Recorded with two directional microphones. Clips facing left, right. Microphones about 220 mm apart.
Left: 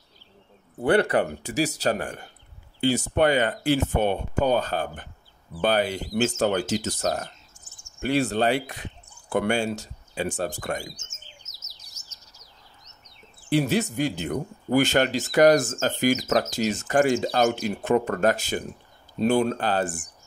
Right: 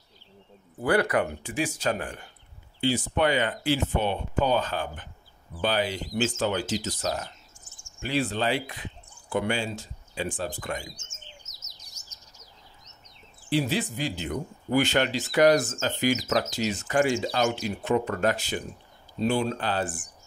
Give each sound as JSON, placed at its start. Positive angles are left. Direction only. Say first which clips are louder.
{"t": 0.8, "sound": "speech", "louder": "left 3 dB", "side_deg": 30}
{"t": 1.4, "sound": "speech", "louder": "left 4 dB", "side_deg": 40}
{"t": 12.0, "sound": "bird", "louder": "even", "side_deg": 5}
{"t": 13.5, "sound": "speech", "louder": "left 4 dB", "side_deg": 50}